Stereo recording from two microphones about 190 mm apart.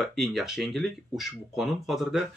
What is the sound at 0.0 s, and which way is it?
Speech, centre (ahead or behind).